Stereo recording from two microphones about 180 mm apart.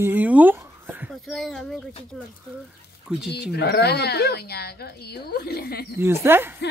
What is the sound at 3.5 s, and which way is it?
Speech, 60° left (ahead or behind).